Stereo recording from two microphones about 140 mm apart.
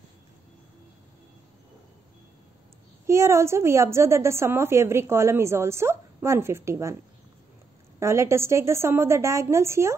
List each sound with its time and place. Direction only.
3.1 s a woman's voice: 20° right (ahead or behind)
8.0 s a woman's voice: 20° right (ahead or behind)